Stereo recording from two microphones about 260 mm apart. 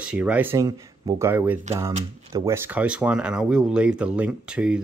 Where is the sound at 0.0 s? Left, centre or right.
Centre.